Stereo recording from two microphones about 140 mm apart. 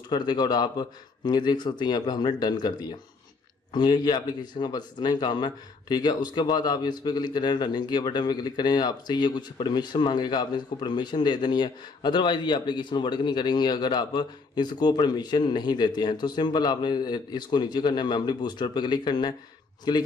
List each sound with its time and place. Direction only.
0.1 s speech: 30° left (ahead or behind)